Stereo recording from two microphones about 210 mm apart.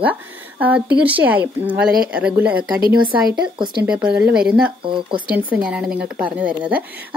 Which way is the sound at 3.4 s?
20° right (ahead or behind).